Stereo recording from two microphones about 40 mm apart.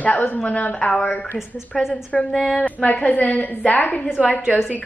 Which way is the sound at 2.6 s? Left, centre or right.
Left.